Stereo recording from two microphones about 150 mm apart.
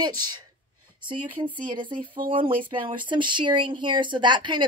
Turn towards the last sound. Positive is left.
turn(degrees=-30)  # may be behind; listen again after turning